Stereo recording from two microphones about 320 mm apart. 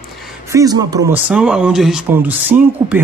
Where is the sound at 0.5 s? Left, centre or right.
Centre.